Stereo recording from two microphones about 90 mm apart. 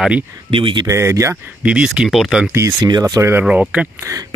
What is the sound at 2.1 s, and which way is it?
Speech, centre (ahead or behind).